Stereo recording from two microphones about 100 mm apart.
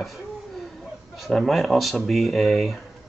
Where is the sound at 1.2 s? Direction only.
Centre (ahead or behind).